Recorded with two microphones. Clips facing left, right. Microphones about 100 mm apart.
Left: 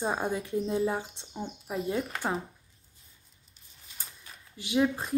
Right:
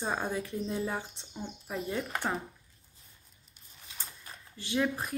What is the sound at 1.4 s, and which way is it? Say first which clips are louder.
Speech: left 3 dB; 5° left (ahead or behind).